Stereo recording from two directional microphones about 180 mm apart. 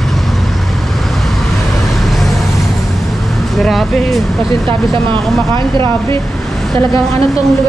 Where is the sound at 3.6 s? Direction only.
Centre (ahead or behind).